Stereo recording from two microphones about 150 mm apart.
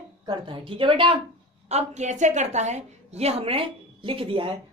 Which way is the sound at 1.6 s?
50° right (ahead or behind).